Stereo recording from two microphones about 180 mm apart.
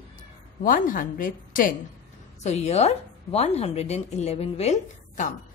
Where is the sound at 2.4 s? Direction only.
40° left (ahead or behind).